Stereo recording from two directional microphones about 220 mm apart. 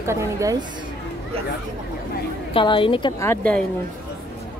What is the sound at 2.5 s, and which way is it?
A woman's voice, 25° left (ahead or behind).